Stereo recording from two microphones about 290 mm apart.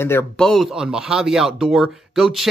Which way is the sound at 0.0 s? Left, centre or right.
Centre.